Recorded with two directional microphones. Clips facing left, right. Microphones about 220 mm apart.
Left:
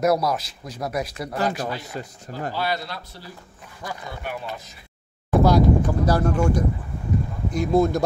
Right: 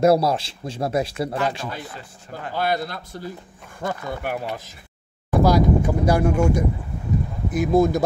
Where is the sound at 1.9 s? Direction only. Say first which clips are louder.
Left 4 dB; 40° left (ahead or behind).